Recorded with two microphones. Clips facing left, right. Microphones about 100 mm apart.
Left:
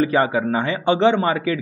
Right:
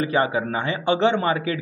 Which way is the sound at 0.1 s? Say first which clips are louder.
Left 3 dB; 35° left (ahead or behind).